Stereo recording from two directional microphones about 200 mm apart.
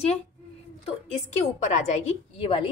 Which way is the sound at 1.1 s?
35° left (ahead or behind).